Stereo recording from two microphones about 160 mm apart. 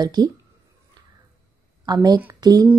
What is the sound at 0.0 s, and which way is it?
Speech, 25° right (ahead or behind).